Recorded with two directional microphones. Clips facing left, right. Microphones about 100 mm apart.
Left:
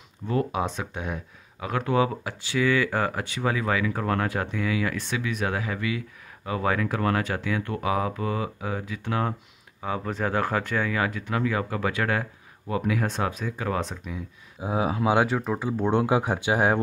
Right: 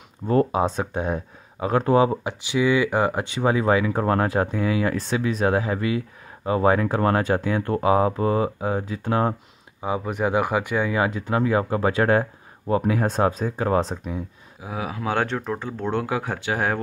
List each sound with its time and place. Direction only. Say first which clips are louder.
0.3 s speech: right 6 dB; 35° right (ahead or behind)
9.8 s speech: right 4 dB; 15° right (ahead or behind); by 14.2 s 35° right (ahead or behind)
14.6 s speech: left 4 dB; 25° left (ahead or behind)
15.1 s speech: left 1 dB; 5° left (ahead or behind)
15.9 s speech: left 2 dB; 20° left (ahead or behind)